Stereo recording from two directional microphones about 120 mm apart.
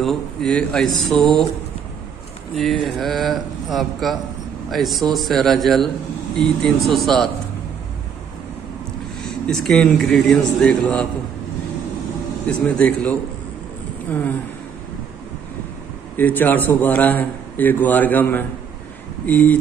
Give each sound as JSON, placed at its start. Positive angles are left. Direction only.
{"t": 0.0, "sound": "a man's voice", "side_deg": 5}
{"t": 2.5, "sound": "a man's voice", "side_deg": 5}
{"t": 9.2, "sound": "a man's voice", "side_deg": 5}
{"t": 12.4, "sound": "a man's voice", "side_deg": 10}
{"t": 16.2, "sound": "a man's voice", "side_deg": 15}